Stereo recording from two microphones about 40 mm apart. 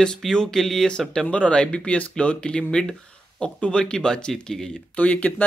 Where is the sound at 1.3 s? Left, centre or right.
Left.